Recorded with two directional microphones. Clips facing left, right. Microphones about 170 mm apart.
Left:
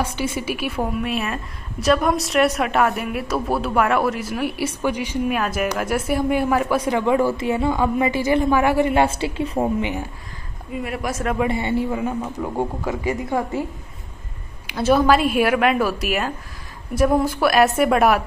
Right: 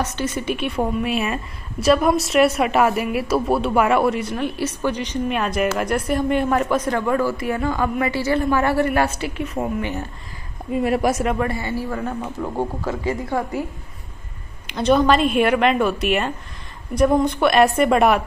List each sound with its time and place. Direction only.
0.0 s a woman's voice: 10° left (ahead or behind); by 9.7 s 30° left (ahead or behind)
9.8 s speech: 15° left (ahead or behind)
10.8 s speech: 35° right (ahead or behind)
11.3 s a woman's voice: 20° left (ahead or behind)
11.9 s a woman's voice: 10° left (ahead or behind)
14.7 s a woman's voice: 5° left (ahead or behind)